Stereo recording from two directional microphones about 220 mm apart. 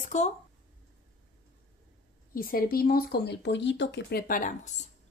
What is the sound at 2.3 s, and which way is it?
A woman's voice, 40° left (ahead or behind).